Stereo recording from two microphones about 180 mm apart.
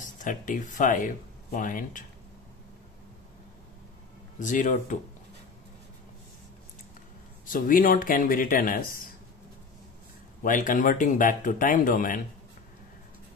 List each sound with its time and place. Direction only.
0.2 s speech: 45° left (ahead or behind)
4.4 s speech: 45° left (ahead or behind)
7.4 s speech: 50° left (ahead or behind)
10.4 s speech: 50° left (ahead or behind)